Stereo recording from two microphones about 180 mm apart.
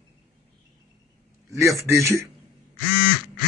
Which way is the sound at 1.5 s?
15° right (ahead or behind).